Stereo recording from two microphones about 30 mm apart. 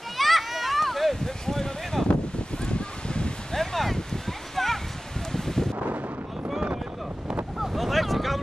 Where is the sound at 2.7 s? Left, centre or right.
Left.